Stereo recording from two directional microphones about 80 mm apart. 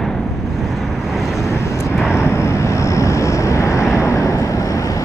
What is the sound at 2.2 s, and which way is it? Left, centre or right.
Vehicle, left.